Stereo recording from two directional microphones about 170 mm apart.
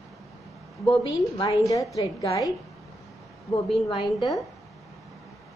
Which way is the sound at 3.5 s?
35° left (ahead or behind).